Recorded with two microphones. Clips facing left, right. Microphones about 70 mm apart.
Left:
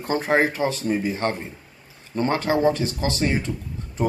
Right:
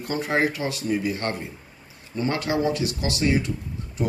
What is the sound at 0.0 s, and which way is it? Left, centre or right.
Speech, left.